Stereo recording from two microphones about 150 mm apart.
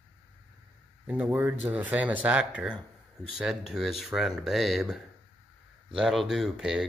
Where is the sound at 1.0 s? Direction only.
10° right (ahead or behind).